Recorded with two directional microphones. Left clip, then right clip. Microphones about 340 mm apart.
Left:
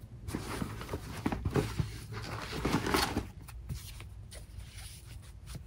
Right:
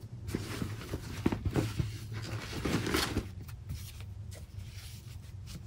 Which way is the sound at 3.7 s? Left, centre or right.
Centre.